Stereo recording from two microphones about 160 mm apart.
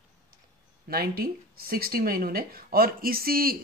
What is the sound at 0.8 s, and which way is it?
Speech, 70° right (ahead or behind).